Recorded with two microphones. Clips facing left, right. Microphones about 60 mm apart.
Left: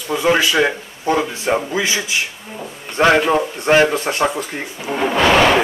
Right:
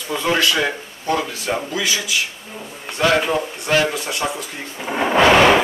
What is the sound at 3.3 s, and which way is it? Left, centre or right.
Speech, left.